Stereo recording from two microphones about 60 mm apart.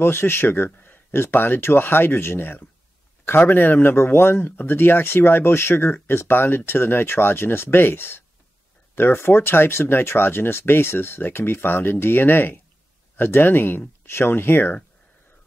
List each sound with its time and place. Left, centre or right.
0.0 s speech: left